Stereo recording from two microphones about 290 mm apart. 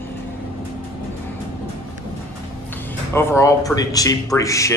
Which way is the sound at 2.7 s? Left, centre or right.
Centre.